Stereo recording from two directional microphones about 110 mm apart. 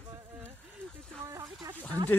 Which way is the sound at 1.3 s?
30° right (ahead or behind).